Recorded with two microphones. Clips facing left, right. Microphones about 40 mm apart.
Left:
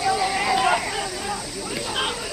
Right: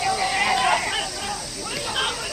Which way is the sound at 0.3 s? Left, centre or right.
Centre.